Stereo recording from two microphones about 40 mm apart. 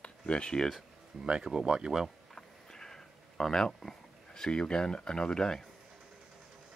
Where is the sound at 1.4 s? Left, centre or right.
Centre.